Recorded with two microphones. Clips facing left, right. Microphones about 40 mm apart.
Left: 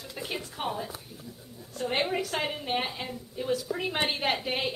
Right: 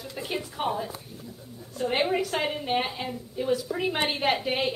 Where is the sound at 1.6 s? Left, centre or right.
Centre.